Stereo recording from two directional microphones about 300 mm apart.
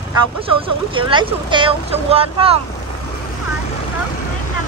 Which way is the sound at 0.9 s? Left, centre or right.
Centre.